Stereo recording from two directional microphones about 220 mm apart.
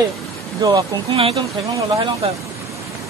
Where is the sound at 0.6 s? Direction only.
20° right (ahead or behind).